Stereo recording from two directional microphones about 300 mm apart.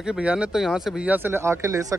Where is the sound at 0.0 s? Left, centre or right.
Centre.